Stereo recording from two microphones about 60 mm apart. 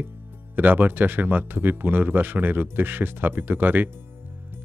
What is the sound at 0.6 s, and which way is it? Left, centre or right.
Speech, right.